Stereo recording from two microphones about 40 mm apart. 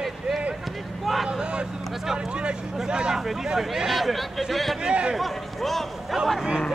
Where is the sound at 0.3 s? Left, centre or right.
Centre.